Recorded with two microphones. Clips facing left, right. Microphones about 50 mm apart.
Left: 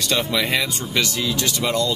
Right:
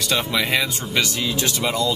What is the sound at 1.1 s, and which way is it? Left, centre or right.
Speech, right.